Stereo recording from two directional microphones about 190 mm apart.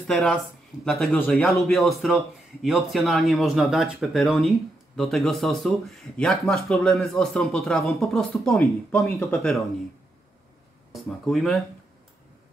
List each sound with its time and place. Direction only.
0.0 s a man's voice: 5° left (ahead or behind)
10.9 s a man's voice: centre (ahead or behind)